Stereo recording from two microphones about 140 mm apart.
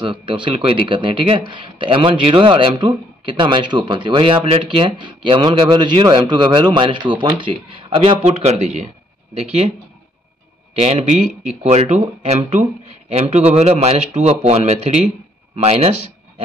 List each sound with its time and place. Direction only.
0.0 s speech: 35° right (ahead or behind); by 9.7 s 50° right (ahead or behind)
10.7 s speech: 50° right (ahead or behind)